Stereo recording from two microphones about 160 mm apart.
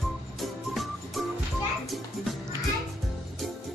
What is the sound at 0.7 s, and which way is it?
Music, centre (ahead or behind).